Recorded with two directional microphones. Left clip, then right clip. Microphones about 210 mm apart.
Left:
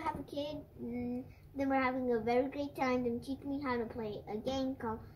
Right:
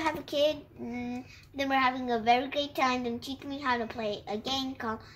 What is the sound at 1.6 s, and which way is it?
A woman's voice, 45° right (ahead or behind).